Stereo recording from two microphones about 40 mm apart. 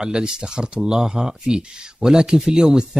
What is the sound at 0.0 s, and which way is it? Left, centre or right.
Speech, centre.